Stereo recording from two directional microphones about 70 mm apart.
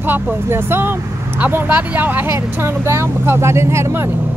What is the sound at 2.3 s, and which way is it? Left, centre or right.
Speech, right.